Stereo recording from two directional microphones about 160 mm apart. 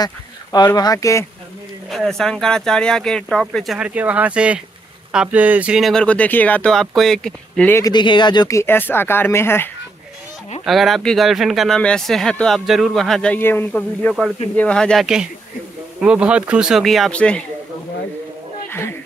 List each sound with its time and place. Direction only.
0.0 s speech: 25° left (ahead or behind)
1.9 s speech: centre (ahead or behind)
7.8 s speech: 30° left (ahead or behind)
10.6 s speech: centre (ahead or behind)
18.7 s a sound: 15° left (ahead or behind)